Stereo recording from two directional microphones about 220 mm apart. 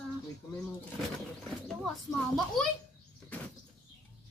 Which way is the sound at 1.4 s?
Centre (ahead or behind).